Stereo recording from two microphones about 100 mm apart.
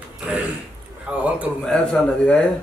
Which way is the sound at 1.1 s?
10° right (ahead or behind).